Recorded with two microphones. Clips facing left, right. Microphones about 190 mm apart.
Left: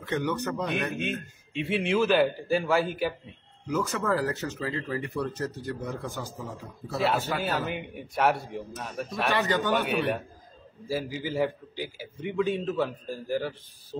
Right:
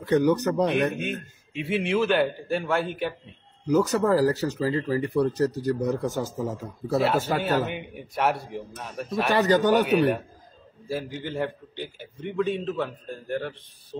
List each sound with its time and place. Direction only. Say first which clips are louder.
0.0 s speech: right 8 dB; 40° right (ahead or behind)
0.9 s a man's voice: right 1 dB; centre (ahead or behind)
3.6 s speech: right 7 dB; 40° right (ahead or behind)
7.4 s a man's voice: right 4 dB; centre (ahead or behind)
9.3 s speech: right 7 dB; 40° right (ahead or behind)
9.8 s a man's voice: right 6 dB; centre (ahead or behind)